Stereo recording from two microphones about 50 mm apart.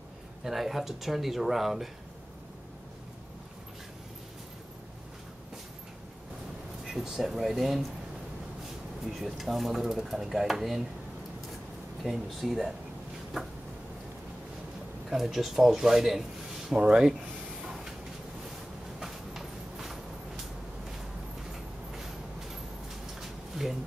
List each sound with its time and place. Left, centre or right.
0.4 s speech: centre
6.9 s speech: centre
9.1 s speech: centre
12.0 s speech: centre
15.0 s speech: centre
16.7 s speech: centre
17.6 s vehicle: centre
18.9 s clip-clop: centre
21.5 s vehicle: centre
23.2 s a sound: centre